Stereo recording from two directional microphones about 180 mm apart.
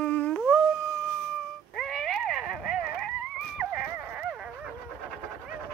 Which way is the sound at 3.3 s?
5° right (ahead or behind).